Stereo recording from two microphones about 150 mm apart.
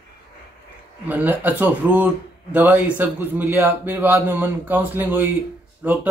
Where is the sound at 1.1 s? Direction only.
10° right (ahead or behind).